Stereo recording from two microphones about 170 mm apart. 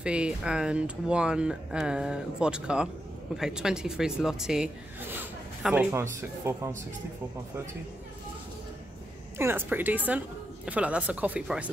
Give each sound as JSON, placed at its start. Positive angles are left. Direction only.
{"t": 0.0, "sound": "a woman's voice", "side_deg": -5}
{"t": 9.4, "sound": "a woman's voice", "side_deg": -15}